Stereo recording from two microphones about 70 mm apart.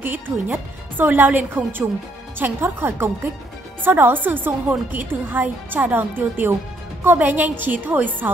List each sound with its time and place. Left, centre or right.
0.0 s a woman's voice: right